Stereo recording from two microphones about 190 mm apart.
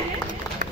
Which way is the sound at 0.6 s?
45° right (ahead or behind).